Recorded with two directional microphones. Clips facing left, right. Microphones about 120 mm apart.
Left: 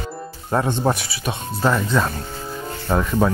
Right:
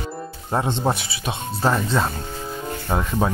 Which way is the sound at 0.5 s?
20° right (ahead or behind).